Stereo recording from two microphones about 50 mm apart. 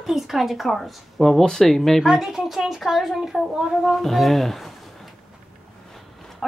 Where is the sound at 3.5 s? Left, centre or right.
Centre.